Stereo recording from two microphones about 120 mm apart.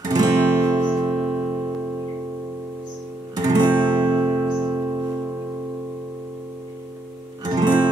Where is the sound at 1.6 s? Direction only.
25° right (ahead or behind).